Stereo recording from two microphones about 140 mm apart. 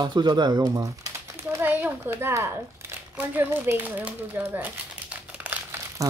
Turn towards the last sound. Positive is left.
turn(degrees=-15)  # may be behind; listen again after turning